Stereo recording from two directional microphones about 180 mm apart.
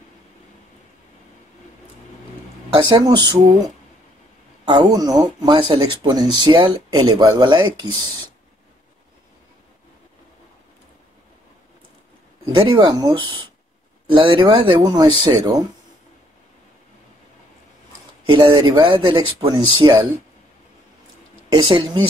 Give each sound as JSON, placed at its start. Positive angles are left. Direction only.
{"t": 2.8, "sound": "speech", "side_deg": -25}
{"t": 12.4, "sound": "speech", "side_deg": -25}
{"t": 18.2, "sound": "speech", "side_deg": -25}
{"t": 21.5, "sound": "speech", "side_deg": -25}